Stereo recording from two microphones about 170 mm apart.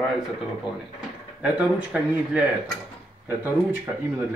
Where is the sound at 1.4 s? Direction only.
5° right (ahead or behind).